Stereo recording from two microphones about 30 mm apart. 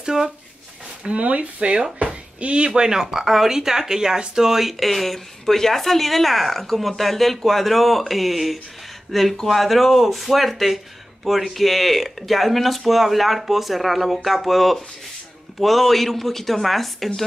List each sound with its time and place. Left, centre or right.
0.0 s speech: centre
1.0 s speech: right
2.0 s a sound: right
2.7 s speech: right; by 17.1 s centre